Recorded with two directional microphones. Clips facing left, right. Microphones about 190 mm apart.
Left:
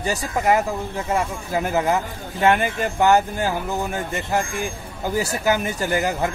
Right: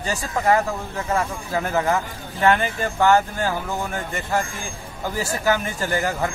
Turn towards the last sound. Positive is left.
turn(degrees=20)  # may be behind; listen again after turning